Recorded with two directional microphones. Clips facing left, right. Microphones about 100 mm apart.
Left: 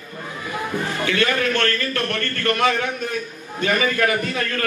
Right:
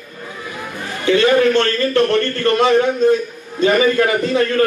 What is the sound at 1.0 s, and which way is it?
A man's voice, 25° right (ahead or behind).